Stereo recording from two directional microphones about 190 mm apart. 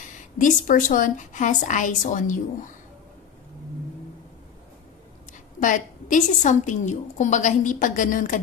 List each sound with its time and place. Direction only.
0.4 s a woman's voice: 45° left (ahead or behind)
5.6 s a woman's voice: 45° left (ahead or behind)